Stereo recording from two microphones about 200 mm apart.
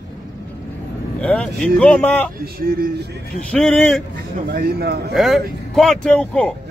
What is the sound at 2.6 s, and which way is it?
Speech, 50° right (ahead or behind).